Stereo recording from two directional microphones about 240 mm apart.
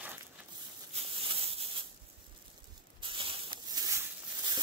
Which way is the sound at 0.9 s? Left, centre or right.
Right.